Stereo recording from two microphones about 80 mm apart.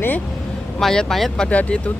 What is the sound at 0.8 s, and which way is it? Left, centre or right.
Speech, centre.